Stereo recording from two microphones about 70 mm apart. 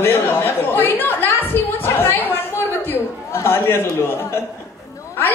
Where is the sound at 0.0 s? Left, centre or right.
Left.